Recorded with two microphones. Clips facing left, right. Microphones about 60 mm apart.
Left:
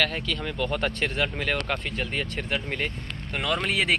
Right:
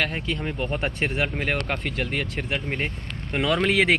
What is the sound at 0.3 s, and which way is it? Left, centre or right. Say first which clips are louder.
Speech: right 1 dB; right.